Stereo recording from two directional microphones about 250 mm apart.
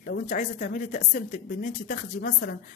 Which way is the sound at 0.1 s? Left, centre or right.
Left.